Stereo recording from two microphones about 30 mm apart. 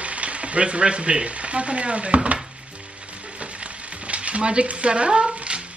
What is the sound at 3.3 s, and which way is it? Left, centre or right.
Frying, right.